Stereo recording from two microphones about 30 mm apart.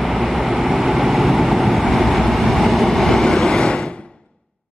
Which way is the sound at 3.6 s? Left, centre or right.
Left.